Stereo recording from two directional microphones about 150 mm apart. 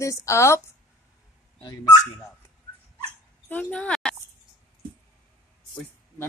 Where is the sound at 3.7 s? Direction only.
5° left (ahead or behind).